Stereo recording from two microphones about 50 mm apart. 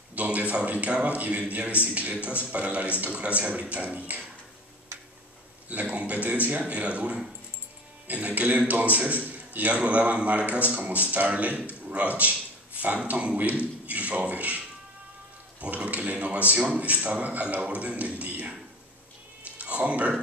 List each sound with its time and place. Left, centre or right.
0.1 s a man's voice: right
5.7 s a man's voice: right
15.6 s a man's voice: right
19.4 s a sound: right